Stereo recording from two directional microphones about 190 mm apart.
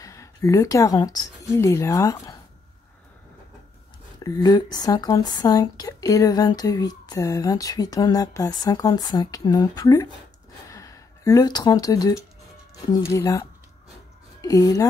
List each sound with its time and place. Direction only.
0.0 s speech: 15° left (ahead or behind)
4.2 s speech: 20° left (ahead or behind)